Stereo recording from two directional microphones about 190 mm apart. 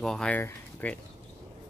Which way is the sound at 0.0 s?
5° left (ahead or behind).